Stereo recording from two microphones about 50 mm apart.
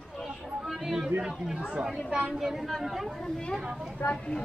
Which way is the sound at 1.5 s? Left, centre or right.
Right.